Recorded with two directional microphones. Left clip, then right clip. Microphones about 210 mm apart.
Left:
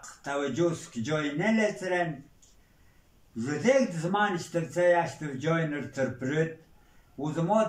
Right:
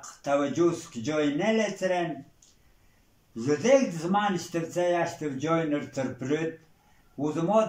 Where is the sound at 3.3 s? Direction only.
10° right (ahead or behind).